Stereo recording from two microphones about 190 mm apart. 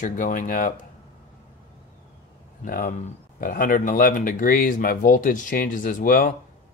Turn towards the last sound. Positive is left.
turn(degrees=45)  # may be behind; listen again after turning